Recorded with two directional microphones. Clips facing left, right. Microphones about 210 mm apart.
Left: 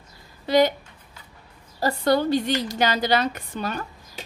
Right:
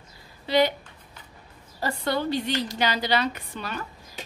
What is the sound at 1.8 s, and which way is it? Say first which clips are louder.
A woman's voice: left 6 dB; 40° left (ahead or behind).